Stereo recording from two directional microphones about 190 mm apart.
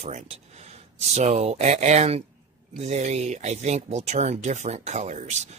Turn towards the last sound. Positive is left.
turn(degrees=-40)  # may be behind; listen again after turning